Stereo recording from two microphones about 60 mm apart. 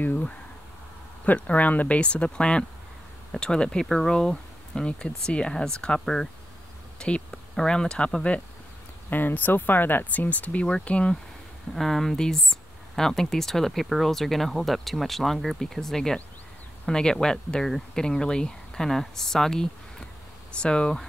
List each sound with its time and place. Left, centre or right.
0.0 s speech: left
9.1 s speech: left; by 11.1 s centre
11.7 s speech: centre